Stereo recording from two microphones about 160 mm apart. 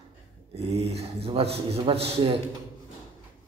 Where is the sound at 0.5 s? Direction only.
40° right (ahead or behind).